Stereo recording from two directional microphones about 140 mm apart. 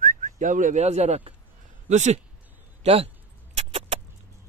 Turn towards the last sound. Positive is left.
turn(degrees=-50)  # may be behind; listen again after turning